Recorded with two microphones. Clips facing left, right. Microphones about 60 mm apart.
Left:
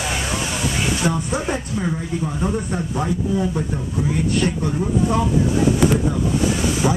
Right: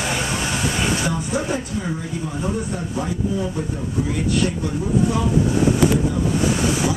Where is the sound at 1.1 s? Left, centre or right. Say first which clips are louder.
Left 1 dB; left.